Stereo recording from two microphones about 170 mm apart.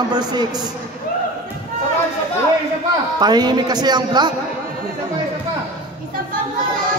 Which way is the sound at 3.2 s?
25° right (ahead or behind).